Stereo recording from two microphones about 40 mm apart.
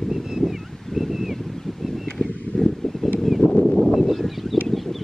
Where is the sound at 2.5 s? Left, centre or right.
Left.